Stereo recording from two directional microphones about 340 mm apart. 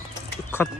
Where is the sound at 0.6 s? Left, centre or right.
Centre.